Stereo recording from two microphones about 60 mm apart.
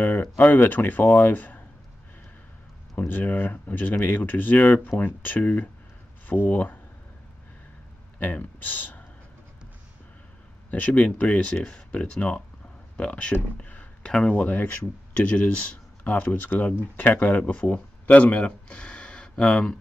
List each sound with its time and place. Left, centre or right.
0.5 s speech: left
3.1 s speech: left
8.2 s speech: left
10.7 s speech: left
14.4 s speech: left